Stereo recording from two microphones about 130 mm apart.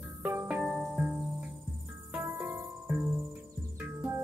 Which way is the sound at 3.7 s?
20° right (ahead or behind).